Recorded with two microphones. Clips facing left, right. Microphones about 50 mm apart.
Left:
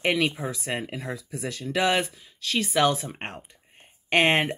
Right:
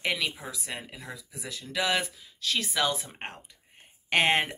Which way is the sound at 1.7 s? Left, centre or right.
Left.